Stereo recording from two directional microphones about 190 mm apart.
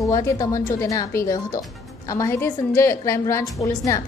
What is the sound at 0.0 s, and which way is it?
A woman's voice, 15° left (ahead or behind).